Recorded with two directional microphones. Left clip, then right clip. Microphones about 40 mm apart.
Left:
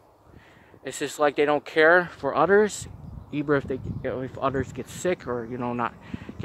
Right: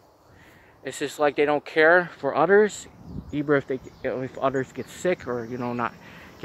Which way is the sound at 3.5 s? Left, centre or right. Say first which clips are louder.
Right 2 dB; right.